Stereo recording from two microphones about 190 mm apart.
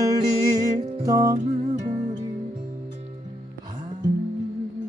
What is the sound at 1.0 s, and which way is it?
Music, 20° right (ahead or behind).